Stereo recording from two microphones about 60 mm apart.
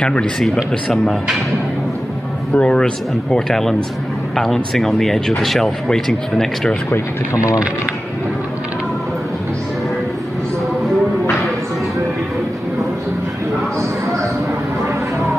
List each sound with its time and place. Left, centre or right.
0.0 s speech: centre
2.5 s speech: centre
7.3 s speech: left